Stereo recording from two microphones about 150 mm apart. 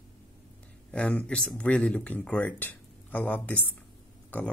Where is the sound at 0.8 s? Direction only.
10° left (ahead or behind).